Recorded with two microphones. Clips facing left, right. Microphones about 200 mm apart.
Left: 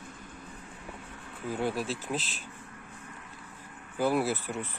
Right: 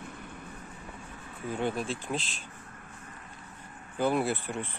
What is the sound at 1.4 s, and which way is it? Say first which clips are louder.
Speech: even; 5° left (ahead or behind).